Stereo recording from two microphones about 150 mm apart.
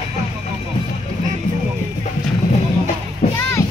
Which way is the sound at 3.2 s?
45° left (ahead or behind).